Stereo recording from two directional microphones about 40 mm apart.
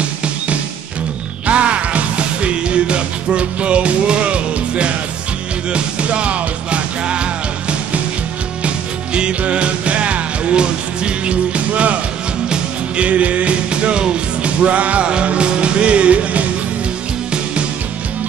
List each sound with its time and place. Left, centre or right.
1.5 s music: right
8.6 s music: right
12.4 s music: right
13.0 s music: right